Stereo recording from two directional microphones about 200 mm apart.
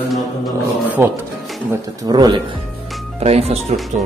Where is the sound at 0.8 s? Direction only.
10° right (ahead or behind).